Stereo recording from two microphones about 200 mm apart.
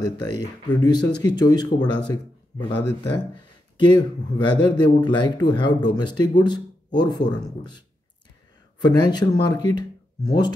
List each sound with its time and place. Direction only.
0.2 s speech: 20° left (ahead or behind)
3.8 s speech: 20° left (ahead or behind)
8.8 s speech: 20° left (ahead or behind)